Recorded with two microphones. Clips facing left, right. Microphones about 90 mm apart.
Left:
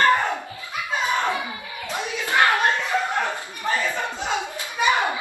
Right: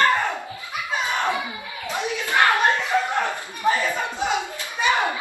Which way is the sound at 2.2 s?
20° left (ahead or behind).